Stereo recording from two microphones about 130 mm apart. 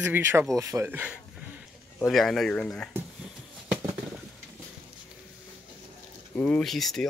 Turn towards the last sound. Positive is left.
turn(degrees=0)  # may be behind; listen again after turning